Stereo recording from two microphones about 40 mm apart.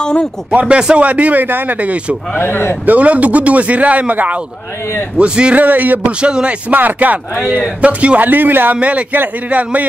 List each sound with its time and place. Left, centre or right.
0.0 s speech: left
0.7 s a man's voice: right
1.0 s speech: right
1.4 s speech: right
1.8 s speech: right
2.3 s a man's voice: left
2.8 s speech: right
5.1 s a man's voice: right
5.6 s speech: right
6.2 s a man's voice: right
6.7 s speech: right
7.8 s speech: right
8.2 s speech: right
8.7 s speech: right